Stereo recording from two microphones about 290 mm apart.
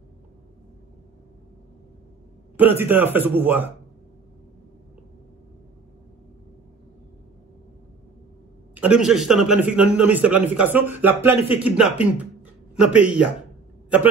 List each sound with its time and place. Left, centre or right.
2.5 s a man's voice: centre
8.7 s a man's voice: centre